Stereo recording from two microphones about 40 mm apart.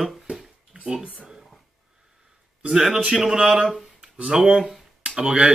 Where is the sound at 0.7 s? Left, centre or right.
Right.